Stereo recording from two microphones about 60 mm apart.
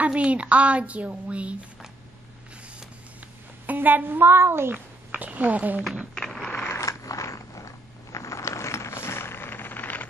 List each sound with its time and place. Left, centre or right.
0.0 s a woman's voice: right
3.6 s a woman's voice: right
4.7 s speech: right
6.1 s mechanisms: centre
6.7 s mechanisms: left